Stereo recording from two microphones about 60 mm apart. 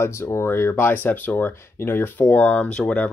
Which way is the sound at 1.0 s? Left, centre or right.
Left.